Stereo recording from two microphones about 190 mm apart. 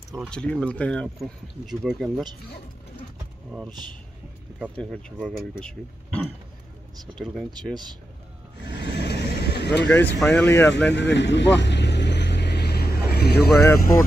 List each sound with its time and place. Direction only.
0.3 s speech: 5° left (ahead or behind)
4.7 s speech: 5° left (ahead or behind)
8.6 s vehicle: 65° left (ahead or behind)
9.8 s speech: 10° left (ahead or behind)
10.9 s vehicle: 70° left (ahead or behind)